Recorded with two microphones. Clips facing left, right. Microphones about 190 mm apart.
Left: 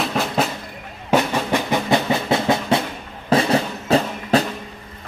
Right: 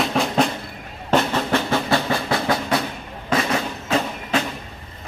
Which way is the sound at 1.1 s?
15° left (ahead or behind).